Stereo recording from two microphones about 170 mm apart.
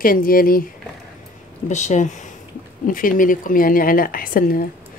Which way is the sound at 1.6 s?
45° left (ahead or behind).